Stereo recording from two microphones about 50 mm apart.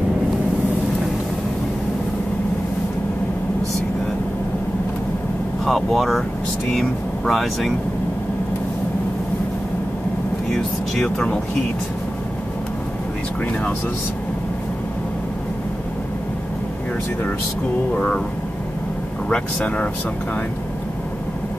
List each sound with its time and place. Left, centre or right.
5.7 s speech: centre
10.5 s speech: centre
17.9 s speech: left
19.2 s speech: left